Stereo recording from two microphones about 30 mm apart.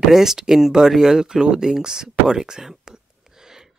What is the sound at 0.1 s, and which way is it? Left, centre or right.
Speech, centre.